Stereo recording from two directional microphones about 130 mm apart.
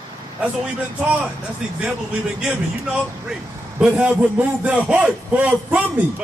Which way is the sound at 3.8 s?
15° right (ahead or behind).